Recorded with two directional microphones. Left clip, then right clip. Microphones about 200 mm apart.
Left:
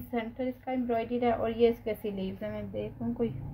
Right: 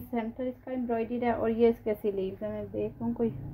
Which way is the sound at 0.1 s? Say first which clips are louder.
Even; 40° right (ahead or behind).